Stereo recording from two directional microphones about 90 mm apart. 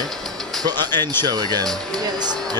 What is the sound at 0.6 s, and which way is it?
Speech, 50° right (ahead or behind).